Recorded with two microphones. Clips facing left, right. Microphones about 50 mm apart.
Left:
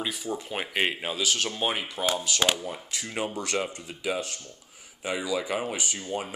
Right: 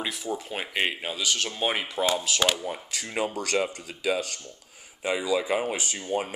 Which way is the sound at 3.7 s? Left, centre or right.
Right.